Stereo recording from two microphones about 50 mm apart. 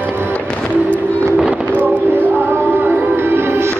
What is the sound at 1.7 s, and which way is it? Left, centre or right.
Fireworks, left.